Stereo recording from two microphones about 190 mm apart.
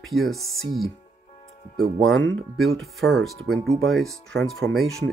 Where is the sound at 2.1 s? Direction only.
75° right (ahead or behind).